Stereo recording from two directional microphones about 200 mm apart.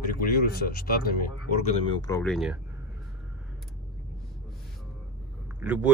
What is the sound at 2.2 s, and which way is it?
Speech, centre (ahead or behind).